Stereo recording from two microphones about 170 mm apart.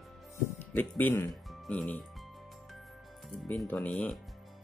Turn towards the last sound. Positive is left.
turn(degrees=5)  # may be behind; listen again after turning